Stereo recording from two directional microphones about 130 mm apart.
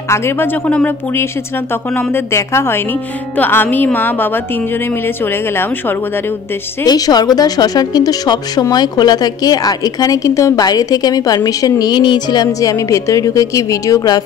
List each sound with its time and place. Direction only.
0.1 s speech: 20° left (ahead or behind)
6.8 s speech: 30° left (ahead or behind)